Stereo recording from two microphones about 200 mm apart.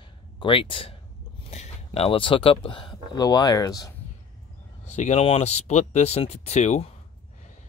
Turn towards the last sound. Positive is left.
turn(degrees=35)  # may be behind; listen again after turning